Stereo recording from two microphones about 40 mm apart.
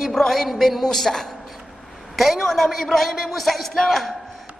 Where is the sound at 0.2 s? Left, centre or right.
Centre.